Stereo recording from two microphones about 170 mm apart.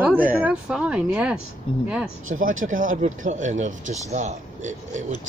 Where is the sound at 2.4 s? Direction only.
50° right (ahead or behind).